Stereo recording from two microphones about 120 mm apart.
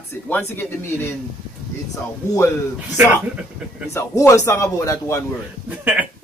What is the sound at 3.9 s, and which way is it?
Speech, 25° left (ahead or behind).